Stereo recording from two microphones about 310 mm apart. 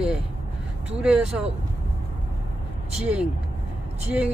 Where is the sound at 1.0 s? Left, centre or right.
Centre.